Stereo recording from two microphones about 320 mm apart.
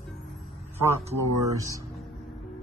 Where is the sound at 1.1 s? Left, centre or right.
Centre.